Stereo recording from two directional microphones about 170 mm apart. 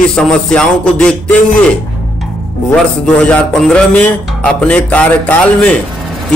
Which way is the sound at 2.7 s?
5° left (ahead or behind).